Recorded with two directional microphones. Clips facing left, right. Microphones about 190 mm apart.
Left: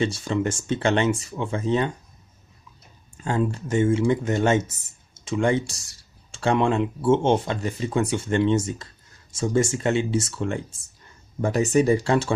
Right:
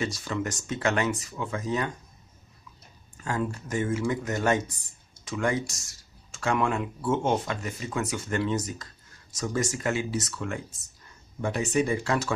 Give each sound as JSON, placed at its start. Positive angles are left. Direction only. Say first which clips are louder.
{"t": 0.0, "sound": "speech", "louder": "left 6 dB", "side_deg": 30}
{"t": 3.3, "sound": "speech", "louder": "left 6 dB", "side_deg": 30}
{"t": 11.4, "sound": "speech", "louder": "left 6 dB", "side_deg": 40}